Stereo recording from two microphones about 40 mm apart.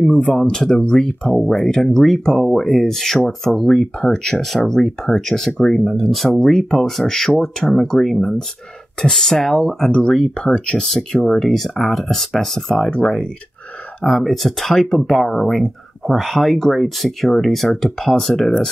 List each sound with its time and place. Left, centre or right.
0.0 s speech: left
6.0 s speech: centre
6.4 s speech: centre
10.4 s speech: left
11.4 s speech: centre
14.2 s speech: centre